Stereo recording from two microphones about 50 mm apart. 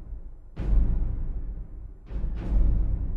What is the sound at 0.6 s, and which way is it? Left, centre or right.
Music, centre.